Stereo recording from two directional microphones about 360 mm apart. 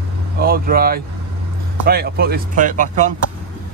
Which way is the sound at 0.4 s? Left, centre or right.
Right.